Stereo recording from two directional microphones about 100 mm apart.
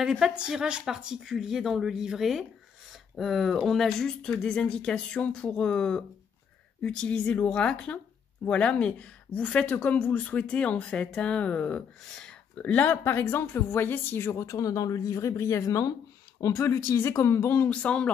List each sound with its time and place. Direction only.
0.0 s speech: 5° right (ahead or behind); by 17.6 s 25° left (ahead or behind)
17.6 s speech: 10° left (ahead or behind)